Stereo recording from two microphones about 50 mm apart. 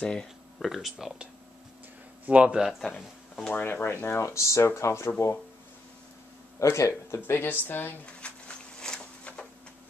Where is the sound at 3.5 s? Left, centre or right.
Left.